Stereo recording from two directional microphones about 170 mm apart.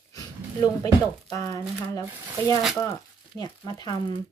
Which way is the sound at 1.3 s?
20° left (ahead or behind).